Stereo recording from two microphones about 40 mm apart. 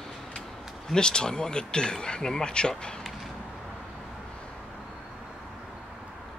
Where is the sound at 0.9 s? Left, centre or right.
Left.